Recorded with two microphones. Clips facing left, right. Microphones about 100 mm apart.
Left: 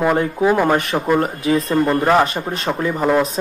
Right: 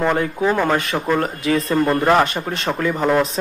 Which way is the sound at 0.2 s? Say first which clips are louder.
Left 3 dB; 10° left (ahead or behind).